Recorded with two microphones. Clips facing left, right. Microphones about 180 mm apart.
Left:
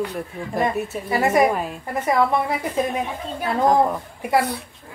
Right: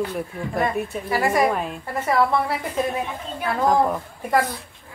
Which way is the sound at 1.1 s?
20° left (ahead or behind).